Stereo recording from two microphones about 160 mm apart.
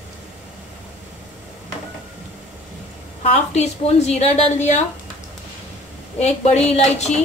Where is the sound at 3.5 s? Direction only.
45° left (ahead or behind).